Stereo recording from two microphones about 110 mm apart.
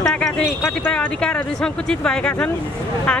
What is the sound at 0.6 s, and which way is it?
Speech, 20° left (ahead or behind).